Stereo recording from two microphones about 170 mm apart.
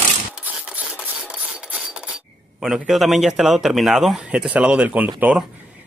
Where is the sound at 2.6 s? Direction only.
Centre (ahead or behind).